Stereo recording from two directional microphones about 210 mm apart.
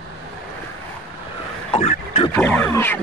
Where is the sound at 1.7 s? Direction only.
30° left (ahead or behind).